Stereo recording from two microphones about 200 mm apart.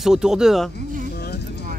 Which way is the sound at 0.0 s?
5° right (ahead or behind).